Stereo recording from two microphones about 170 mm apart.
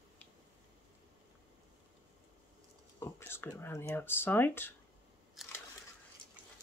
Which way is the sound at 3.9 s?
10° left (ahead or behind).